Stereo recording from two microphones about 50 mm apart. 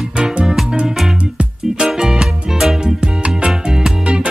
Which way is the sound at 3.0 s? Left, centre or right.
Right.